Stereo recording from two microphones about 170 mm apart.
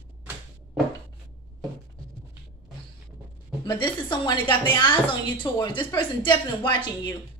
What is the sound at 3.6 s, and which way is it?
Speech, 25° left (ahead or behind).